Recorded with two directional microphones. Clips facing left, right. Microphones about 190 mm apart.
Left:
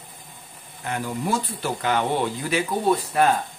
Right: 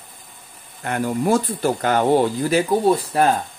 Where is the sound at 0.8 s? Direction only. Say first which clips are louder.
Right 7 dB; 55° right (ahead or behind).